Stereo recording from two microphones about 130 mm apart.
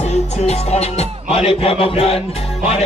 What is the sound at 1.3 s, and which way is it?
Music, 45° left (ahead or behind).